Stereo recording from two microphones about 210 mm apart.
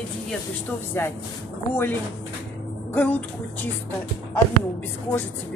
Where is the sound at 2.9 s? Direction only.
10° left (ahead or behind).